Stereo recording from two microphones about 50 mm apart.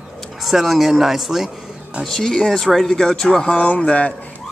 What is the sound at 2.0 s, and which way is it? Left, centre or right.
Speech, centre.